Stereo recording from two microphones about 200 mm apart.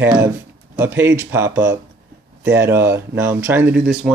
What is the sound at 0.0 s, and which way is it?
Speech, 15° right (ahead or behind).